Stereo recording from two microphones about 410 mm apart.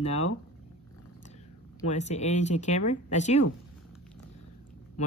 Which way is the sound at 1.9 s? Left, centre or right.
Centre.